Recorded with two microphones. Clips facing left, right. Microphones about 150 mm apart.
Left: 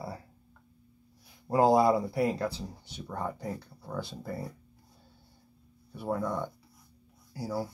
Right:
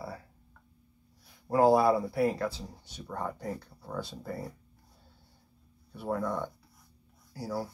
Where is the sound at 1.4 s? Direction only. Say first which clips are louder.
Even; 15° left (ahead or behind).